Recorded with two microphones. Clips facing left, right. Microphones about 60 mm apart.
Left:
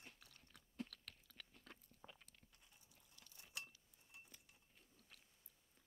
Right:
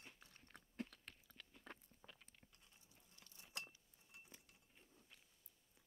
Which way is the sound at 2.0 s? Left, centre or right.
Left.